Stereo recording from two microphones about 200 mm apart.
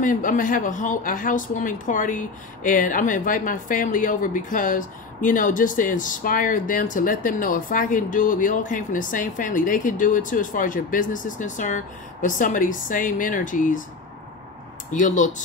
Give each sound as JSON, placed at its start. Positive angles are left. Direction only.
{"t": 0.0, "sound": "a woman's voice", "side_deg": 40}
{"t": 14.9, "sound": "a woman's voice", "side_deg": 40}